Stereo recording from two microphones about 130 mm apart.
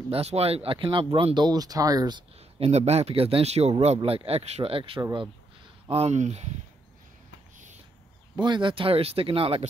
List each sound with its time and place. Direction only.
0.1 s speech: 50° right (ahead or behind); by 2.2 s 30° right (ahead or behind)
2.6 s speech: 55° right (ahead or behind)
8.4 s speech: 35° right (ahead or behind)